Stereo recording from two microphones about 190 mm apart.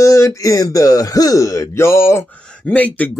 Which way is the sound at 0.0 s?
15° left (ahead or behind).